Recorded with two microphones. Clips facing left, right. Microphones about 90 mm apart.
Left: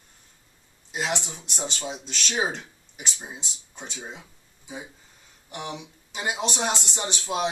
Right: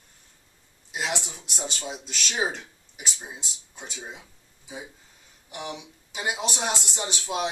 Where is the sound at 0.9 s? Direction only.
Centre (ahead or behind).